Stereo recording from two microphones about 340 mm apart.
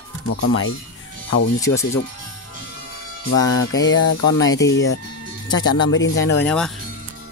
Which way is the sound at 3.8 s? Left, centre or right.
Left.